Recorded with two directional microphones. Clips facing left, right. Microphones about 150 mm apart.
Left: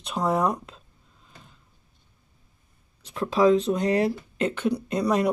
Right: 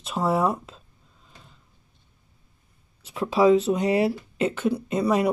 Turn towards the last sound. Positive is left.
turn(degrees=-5)  # may be behind; listen again after turning